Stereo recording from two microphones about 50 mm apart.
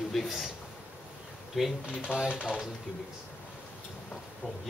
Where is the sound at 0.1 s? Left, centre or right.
Centre.